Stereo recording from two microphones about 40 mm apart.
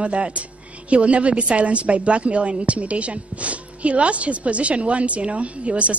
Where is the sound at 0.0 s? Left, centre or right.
Right.